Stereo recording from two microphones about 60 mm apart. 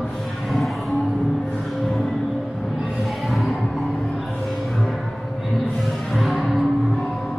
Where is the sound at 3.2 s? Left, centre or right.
Centre.